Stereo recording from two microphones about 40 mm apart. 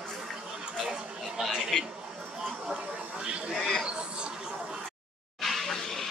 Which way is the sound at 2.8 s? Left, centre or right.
Right.